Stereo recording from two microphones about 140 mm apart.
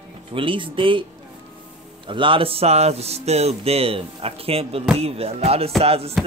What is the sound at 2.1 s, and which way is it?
Speech, 35° right (ahead or behind).